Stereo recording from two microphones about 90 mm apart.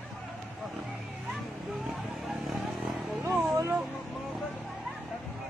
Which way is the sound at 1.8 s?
5° right (ahead or behind).